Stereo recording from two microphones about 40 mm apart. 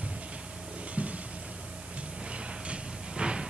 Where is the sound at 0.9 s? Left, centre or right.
Right.